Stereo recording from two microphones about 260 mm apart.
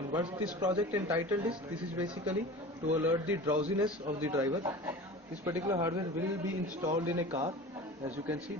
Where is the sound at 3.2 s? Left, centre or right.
Centre.